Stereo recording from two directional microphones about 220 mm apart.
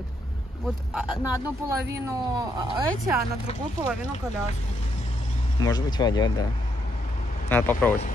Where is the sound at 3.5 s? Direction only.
25° left (ahead or behind).